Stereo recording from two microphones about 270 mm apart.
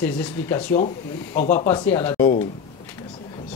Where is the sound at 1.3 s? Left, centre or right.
Left.